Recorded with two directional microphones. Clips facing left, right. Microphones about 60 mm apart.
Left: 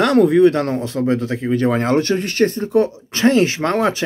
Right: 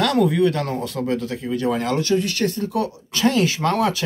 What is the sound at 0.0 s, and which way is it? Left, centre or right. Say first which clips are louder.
Speech: left 6 dB; left.